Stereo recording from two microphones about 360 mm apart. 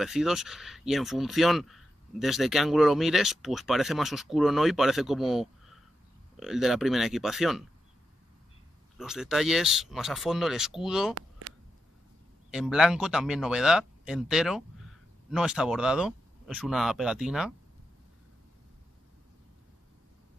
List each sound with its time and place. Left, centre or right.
0.0 s speech: centre
8.9 s speech: centre
11.1 s a sound: right
12.4 s speech: centre